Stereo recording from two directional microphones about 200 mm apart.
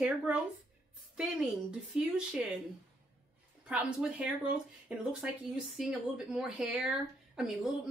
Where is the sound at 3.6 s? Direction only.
5° right (ahead or behind).